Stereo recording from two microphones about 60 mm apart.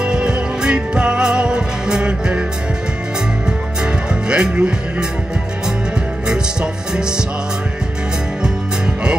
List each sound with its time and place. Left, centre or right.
0.0 s music: centre
3.8 s music: centre
6.2 s music: centre